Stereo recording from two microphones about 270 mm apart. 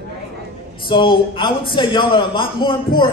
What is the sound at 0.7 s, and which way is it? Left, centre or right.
A man's voice, centre.